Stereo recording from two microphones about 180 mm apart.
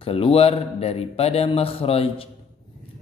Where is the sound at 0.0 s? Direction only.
30° left (ahead or behind).